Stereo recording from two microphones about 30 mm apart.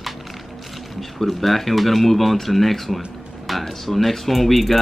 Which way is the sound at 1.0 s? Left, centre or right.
Centre.